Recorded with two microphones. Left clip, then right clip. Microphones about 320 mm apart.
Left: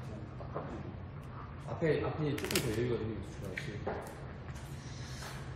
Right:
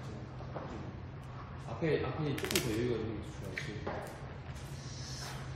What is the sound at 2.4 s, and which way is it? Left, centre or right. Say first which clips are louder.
Speech: right 3 dB; centre.